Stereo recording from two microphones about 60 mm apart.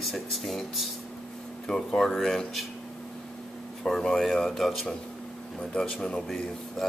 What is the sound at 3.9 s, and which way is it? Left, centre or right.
A man's voice, centre.